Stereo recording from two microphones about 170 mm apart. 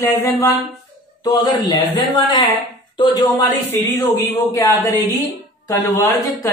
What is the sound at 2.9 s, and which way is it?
A woman's voice, 25° left (ahead or behind).